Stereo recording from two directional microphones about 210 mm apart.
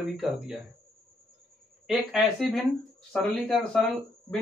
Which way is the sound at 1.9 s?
Centre (ahead or behind).